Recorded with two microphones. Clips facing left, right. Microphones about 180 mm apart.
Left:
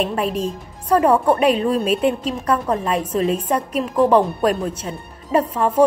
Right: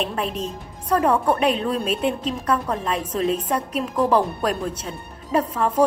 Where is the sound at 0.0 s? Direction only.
5° left (ahead or behind).